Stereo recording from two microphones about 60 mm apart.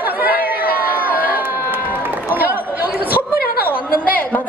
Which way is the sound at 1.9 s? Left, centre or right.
Right.